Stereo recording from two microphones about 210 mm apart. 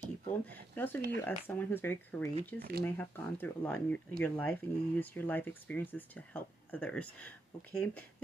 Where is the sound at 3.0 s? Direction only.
10° left (ahead or behind).